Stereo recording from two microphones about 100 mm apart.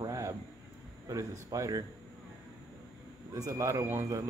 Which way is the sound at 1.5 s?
30° right (ahead or behind).